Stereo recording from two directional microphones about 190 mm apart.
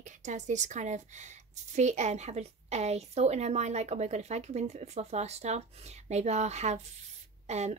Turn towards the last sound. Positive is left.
turn(degrees=-35)  # may be behind; listen again after turning